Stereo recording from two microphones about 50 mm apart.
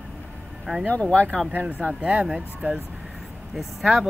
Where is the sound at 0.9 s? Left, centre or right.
Left.